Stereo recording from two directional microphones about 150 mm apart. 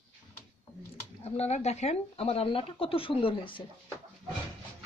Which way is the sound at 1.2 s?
45° left (ahead or behind).